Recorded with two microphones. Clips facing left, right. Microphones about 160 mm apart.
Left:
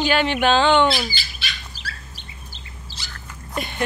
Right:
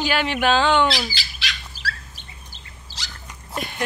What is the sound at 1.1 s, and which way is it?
Squawk, 90° right.